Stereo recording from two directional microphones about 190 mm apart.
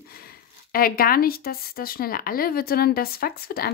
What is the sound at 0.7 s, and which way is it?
Speech, 50° left (ahead or behind).